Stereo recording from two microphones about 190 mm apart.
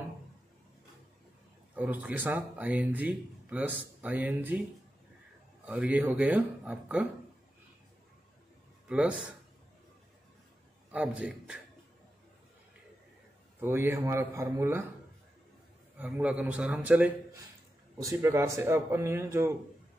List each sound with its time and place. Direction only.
1.8 s speech: 10° right (ahead or behind)
5.7 s speech: 10° right (ahead or behind)
8.8 s a man's voice: 5° right (ahead or behind)
10.9 s a man's voice: 5° right (ahead or behind)
13.6 s speech: 10° right (ahead or behind)
16.0 s speech: 5° right (ahead or behind)